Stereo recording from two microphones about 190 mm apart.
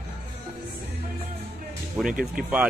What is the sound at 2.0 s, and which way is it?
Speech, 50° right (ahead or behind).